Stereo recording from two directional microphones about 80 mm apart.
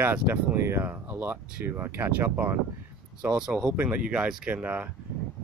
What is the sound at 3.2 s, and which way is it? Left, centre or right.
Speech, centre.